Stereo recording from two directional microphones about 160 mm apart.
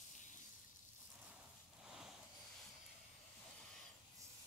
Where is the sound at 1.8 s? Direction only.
5° right (ahead or behind).